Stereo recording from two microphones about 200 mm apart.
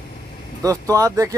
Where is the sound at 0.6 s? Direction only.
15° right (ahead or behind).